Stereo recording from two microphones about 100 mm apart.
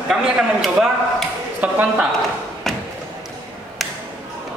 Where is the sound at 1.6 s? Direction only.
15° right (ahead or behind).